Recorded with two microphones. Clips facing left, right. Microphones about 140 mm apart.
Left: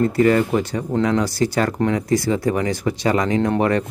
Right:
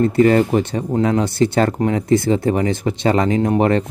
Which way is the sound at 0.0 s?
25° right (ahead or behind).